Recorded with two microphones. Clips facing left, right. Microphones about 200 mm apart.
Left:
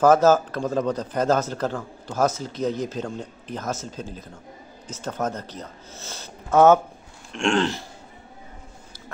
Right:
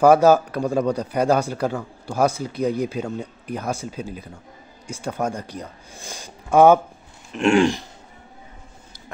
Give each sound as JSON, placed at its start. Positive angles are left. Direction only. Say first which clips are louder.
{"t": 0.0, "sound": "a man's voice", "louder": "right 2 dB", "side_deg": -10}